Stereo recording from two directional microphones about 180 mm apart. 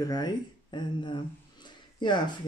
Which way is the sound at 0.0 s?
20° left (ahead or behind).